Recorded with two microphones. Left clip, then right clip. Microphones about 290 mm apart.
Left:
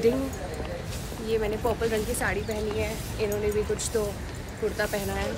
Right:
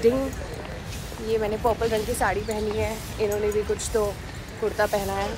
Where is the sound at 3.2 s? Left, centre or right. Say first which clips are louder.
Right 4 dB; centre.